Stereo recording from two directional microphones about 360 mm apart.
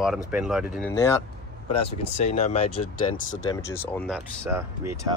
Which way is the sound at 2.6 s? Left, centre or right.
Left.